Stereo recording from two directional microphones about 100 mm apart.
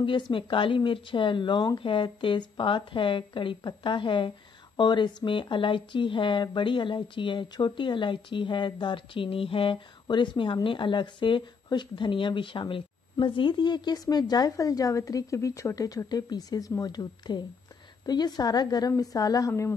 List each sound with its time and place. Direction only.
0.0 s a woman's voice: 55° left (ahead or behind); by 19.7 s 35° left (ahead or behind)